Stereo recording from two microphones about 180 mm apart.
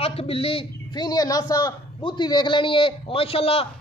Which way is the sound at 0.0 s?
30° left (ahead or behind).